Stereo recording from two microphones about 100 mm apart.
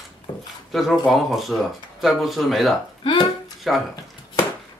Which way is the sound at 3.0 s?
55° left (ahead or behind).